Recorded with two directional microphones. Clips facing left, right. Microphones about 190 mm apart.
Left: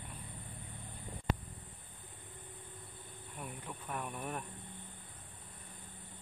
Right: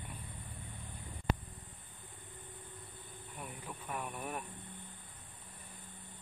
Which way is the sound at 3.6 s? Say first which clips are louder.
Right 1 dB; 5° right (ahead or behind).